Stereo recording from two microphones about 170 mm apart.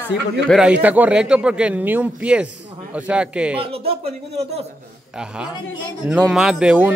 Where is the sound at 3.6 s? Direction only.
35° right (ahead or behind).